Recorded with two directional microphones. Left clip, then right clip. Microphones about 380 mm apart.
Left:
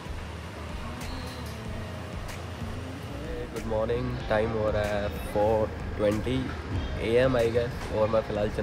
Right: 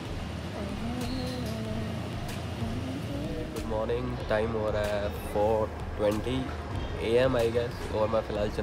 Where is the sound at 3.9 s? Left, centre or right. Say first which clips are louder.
Left 1 dB; centre.